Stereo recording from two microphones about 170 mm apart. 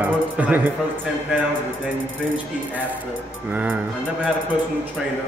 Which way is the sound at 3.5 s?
5° right (ahead or behind).